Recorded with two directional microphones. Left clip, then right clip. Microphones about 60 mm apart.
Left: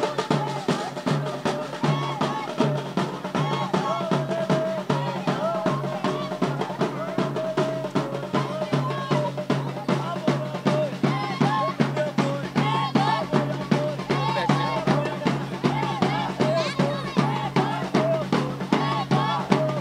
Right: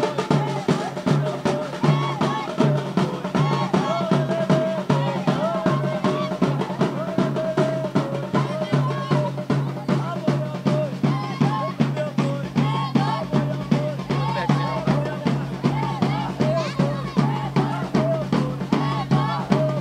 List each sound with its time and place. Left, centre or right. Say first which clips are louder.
0.0 s music: right 2 dB; centre
9.5 s music: even; left